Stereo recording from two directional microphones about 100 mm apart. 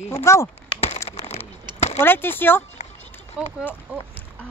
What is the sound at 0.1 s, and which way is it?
Speech, 30° left (ahead or behind).